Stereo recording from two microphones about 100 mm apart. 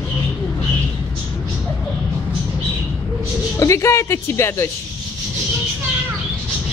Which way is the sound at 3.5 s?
30° left (ahead or behind).